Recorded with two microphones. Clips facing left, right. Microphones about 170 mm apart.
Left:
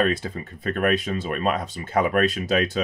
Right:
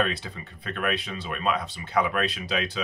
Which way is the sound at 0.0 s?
45° left (ahead or behind).